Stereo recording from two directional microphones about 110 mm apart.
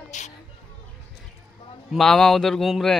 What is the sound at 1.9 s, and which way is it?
Speech, 5° left (ahead or behind).